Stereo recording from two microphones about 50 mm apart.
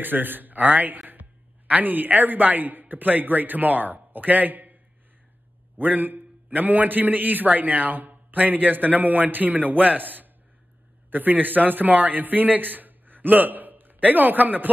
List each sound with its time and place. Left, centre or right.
0.0 s a man's voice: right
5.8 s a man's voice: right